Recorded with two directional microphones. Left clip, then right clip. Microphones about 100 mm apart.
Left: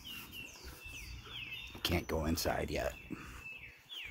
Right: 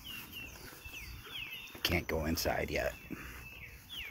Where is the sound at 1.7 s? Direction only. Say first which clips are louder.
Right 3 dB; 25° left (ahead or behind).